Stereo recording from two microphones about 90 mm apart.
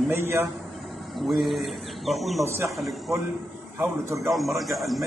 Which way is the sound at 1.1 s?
Centre (ahead or behind).